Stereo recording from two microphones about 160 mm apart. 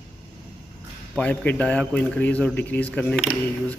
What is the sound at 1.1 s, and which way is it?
A man's voice, 10° left (ahead or behind).